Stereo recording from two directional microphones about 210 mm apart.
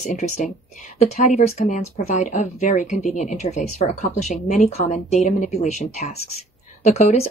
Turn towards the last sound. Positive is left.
turn(degrees=30)  # may be behind; listen again after turning